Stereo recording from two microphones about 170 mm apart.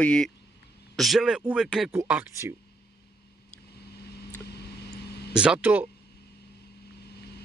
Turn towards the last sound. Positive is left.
turn(degrees=-10)  # may be behind; listen again after turning